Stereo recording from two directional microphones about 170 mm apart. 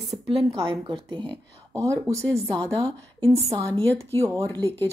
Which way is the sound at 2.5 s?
5° left (ahead or behind).